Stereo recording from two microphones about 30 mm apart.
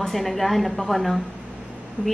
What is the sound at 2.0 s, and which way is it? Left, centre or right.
Speech, right.